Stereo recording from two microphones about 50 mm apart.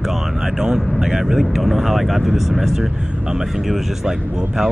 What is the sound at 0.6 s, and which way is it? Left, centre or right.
Speech, centre.